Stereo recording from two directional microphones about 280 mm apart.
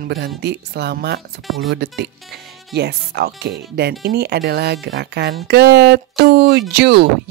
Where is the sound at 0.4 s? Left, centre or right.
Right.